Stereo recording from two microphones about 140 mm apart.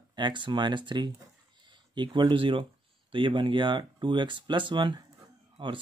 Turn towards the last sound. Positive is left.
turn(degrees=-35)  # may be behind; listen again after turning